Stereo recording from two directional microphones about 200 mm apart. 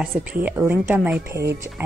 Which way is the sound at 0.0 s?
5° right (ahead or behind).